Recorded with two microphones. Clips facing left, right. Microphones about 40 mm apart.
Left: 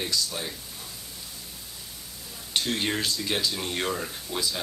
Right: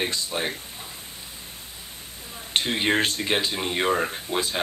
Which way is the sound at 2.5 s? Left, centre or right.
Right.